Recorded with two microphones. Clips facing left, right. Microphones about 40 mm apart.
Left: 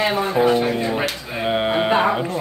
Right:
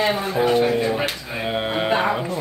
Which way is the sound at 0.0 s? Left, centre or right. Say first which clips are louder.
Left 1 dB; centre.